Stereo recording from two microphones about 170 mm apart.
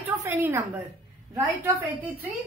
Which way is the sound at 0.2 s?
15° right (ahead or behind).